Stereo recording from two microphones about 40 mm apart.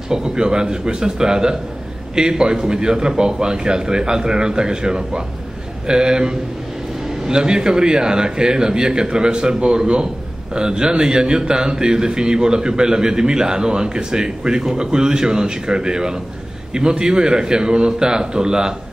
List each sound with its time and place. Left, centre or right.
0.1 s a man's voice: centre